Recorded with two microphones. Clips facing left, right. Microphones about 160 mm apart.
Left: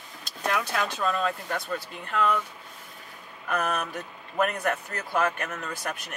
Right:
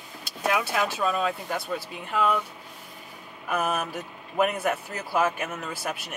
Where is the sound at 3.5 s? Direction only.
5° right (ahead or behind).